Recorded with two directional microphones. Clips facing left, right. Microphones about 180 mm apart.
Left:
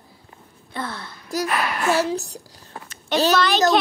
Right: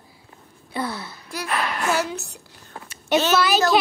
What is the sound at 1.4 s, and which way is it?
Speech, 5° left (ahead or behind).